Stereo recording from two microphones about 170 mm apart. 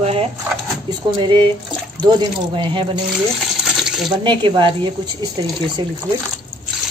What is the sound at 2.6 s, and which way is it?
Speech, 30° right (ahead or behind).